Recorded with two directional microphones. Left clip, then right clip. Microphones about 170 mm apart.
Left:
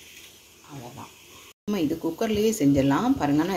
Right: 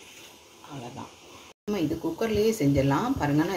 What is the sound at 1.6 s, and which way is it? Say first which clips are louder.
Speech: left 2 dB; 35° left (ahead or behind).